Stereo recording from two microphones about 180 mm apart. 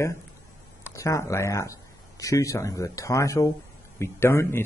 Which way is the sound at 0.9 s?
15° left (ahead or behind).